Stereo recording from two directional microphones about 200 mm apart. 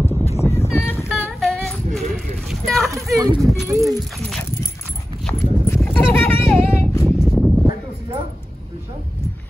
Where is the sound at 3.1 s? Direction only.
15° right (ahead or behind).